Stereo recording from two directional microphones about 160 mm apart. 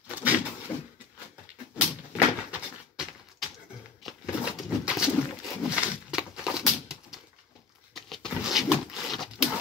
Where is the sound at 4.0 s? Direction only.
5° right (ahead or behind).